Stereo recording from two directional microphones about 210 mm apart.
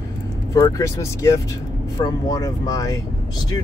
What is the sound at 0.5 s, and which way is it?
Speech, 15° left (ahead or behind).